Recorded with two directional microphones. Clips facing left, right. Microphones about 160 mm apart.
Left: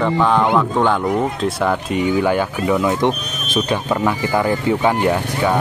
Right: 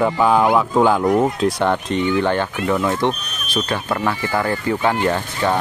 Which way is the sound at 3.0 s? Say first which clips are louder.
Left 2 dB; 15° left (ahead or behind).